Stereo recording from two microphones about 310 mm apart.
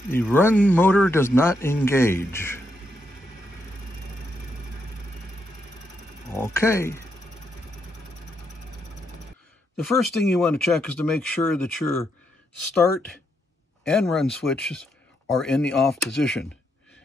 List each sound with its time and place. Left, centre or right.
0.1 s speech: centre
6.3 s speech: centre
9.8 s speech: centre
13.8 s speech: centre